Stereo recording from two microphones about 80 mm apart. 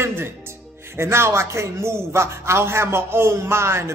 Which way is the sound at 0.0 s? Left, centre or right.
Right.